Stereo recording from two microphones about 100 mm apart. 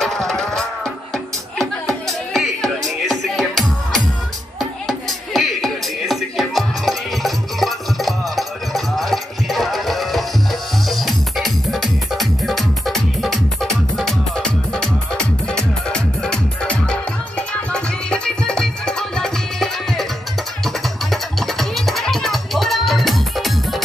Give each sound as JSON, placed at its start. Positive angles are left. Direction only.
{"t": 0.0, "sound": "music", "side_deg": 5}